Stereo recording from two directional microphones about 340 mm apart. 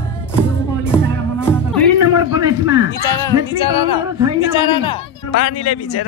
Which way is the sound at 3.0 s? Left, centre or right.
Centre.